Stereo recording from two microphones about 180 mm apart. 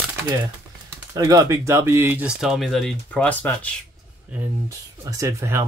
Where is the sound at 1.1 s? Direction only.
20° right (ahead or behind); by 3.7 s 10° left (ahead or behind).